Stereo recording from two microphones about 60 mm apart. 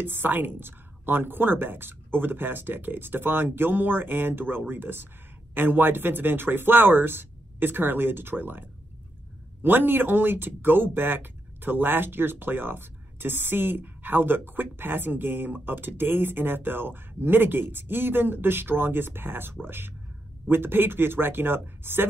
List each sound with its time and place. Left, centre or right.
0.0 s speech: right